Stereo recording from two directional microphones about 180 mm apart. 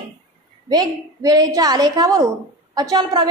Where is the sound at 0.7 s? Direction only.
20° right (ahead or behind).